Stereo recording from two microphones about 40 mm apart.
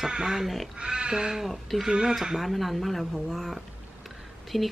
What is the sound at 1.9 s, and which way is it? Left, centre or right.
Speech, centre.